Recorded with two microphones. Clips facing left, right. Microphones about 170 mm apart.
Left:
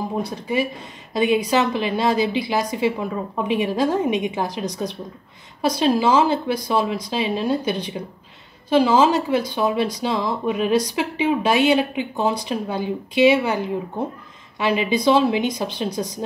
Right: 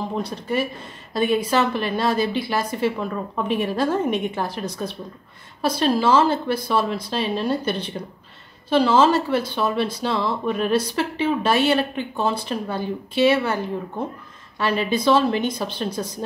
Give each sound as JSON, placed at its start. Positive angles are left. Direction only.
{"t": 0.0, "sound": "speech", "side_deg": 10}